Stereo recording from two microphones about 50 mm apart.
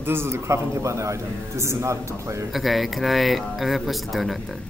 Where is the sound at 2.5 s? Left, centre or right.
Centre.